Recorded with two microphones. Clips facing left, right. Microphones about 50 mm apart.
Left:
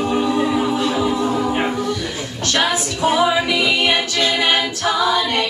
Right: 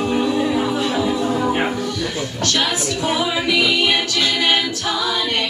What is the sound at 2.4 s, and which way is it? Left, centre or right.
Music, left.